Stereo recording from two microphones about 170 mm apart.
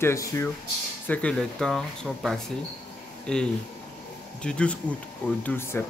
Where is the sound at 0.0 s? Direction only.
15° left (ahead or behind).